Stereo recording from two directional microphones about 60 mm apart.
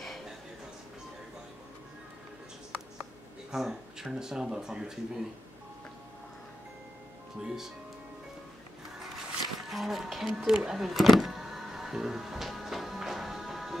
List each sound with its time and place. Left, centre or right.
3.5 s speech: centre
7.4 s speech: centre
9.7 s speech: centre
10.4 s music: centre